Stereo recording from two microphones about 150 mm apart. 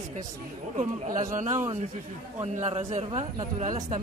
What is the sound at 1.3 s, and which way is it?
A woman's voice, 55° right (ahead or behind).